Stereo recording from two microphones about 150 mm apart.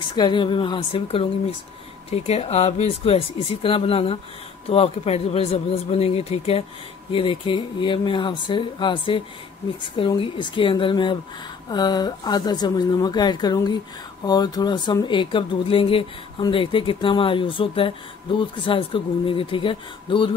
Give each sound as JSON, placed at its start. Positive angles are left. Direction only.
{"t": 0.1, "sound": "speech", "side_deg": 30}